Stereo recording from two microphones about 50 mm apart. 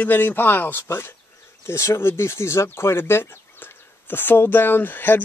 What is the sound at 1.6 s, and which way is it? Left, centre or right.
A man's voice, left.